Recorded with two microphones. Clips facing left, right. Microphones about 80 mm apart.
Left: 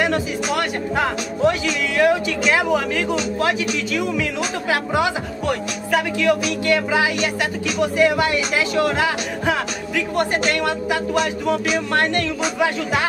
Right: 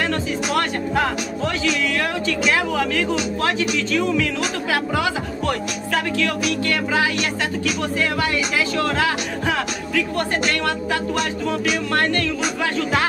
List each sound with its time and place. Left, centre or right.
0.0 s speech: centre
11.9 s speech: left